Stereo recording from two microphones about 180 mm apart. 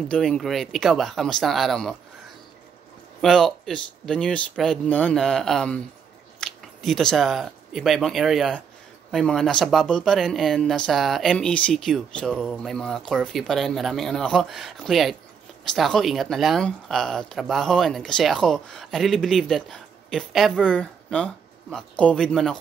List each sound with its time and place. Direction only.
0.1 s speech: 5° left (ahead or behind)
3.2 s speech: centre (ahead or behind)